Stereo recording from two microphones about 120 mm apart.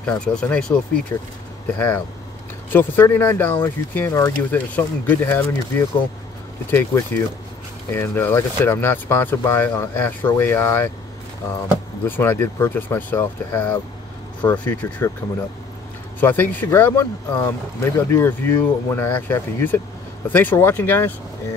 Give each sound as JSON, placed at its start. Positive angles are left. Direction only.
{"t": 0.0, "sound": "speech", "side_deg": 5}
{"t": 6.7, "sound": "speech", "side_deg": 15}
{"t": 12.1, "sound": "speech", "side_deg": 15}
{"t": 16.2, "sound": "speech", "side_deg": 15}